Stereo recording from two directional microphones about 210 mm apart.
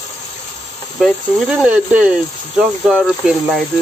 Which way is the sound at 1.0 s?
5° right (ahead or behind).